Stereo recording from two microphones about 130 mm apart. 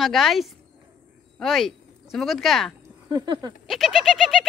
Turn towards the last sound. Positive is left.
turn(degrees=0)  # may be behind; listen again after turning